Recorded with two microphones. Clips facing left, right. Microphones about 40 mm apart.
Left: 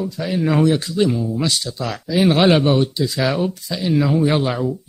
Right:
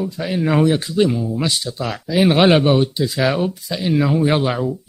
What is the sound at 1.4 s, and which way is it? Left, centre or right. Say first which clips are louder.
Speech: even; centre.